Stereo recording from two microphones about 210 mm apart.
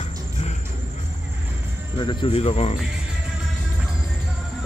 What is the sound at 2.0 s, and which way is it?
Speech, 20° left (ahead or behind).